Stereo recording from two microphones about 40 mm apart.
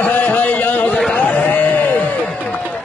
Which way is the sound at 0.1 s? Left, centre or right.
Left.